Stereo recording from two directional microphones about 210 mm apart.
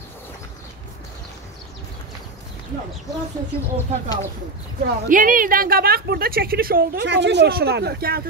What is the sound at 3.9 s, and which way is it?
A woman's voice, 30° right (ahead or behind).